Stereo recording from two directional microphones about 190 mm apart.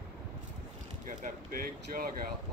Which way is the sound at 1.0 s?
45° right (ahead or behind).